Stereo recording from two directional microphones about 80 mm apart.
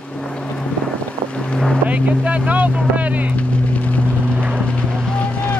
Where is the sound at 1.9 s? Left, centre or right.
Centre.